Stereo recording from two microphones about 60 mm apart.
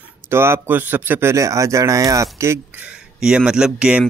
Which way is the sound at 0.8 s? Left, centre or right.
Right.